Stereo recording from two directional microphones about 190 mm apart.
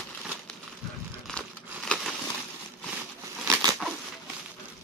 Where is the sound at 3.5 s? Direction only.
15° right (ahead or behind).